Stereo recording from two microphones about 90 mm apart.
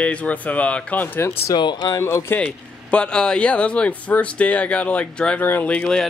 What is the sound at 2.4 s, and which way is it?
Speech, 10° left (ahead or behind).